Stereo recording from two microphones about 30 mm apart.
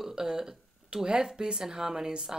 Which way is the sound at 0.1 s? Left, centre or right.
Right.